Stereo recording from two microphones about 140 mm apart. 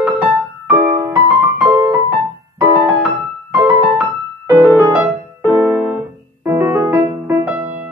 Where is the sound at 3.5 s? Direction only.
10° right (ahead or behind).